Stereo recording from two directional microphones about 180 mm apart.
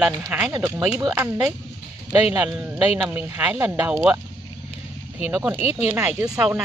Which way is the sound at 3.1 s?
15° right (ahead or behind).